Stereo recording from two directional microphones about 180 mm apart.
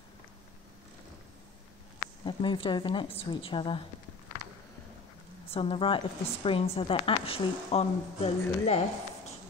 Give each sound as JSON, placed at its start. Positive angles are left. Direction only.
{"t": 2.2, "sound": "a woman's voice", "side_deg": 30}
{"t": 5.5, "sound": "a woman's voice", "side_deg": 30}